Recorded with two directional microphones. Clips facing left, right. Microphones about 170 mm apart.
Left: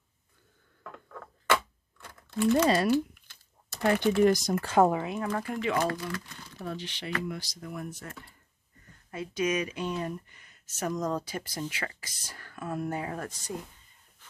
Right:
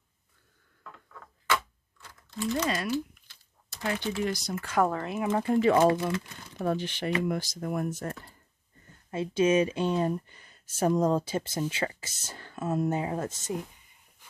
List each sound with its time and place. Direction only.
1.5 s typewriter: 55° left (ahead or behind)
2.9 s speech: 50° left (ahead or behind); by 4.8 s 30° left (ahead or behind)
5.2 s speech: 25° right (ahead or behind)
6.6 s speech: 50° right (ahead or behind)
8.8 s speech: 25° right (ahead or behind)